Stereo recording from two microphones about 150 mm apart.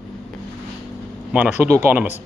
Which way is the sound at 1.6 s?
15° right (ahead or behind).